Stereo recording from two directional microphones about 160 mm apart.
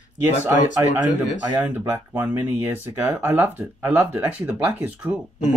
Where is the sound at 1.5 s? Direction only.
15° right (ahead or behind).